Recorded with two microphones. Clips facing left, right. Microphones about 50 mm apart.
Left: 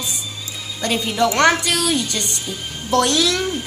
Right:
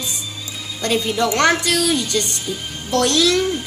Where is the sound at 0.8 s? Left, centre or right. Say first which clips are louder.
Even; centre.